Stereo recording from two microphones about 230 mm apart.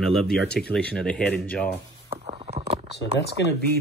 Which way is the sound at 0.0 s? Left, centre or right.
Centre.